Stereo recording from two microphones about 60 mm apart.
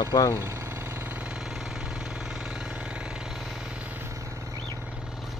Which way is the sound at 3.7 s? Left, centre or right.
Right.